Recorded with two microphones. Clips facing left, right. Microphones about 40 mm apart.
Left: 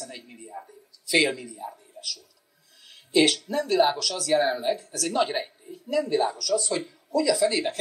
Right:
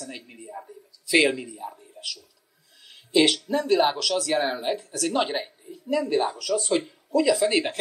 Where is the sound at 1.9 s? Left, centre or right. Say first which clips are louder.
Right 1 dB; right.